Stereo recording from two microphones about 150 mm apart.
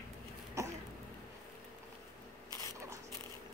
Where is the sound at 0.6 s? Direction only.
20° right (ahead or behind).